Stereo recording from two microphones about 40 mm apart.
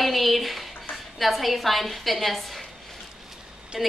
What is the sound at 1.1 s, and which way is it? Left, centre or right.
A woman's voice, centre.